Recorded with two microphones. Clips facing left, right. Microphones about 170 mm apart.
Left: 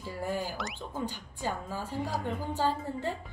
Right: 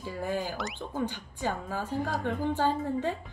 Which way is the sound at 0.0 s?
20° right (ahead or behind).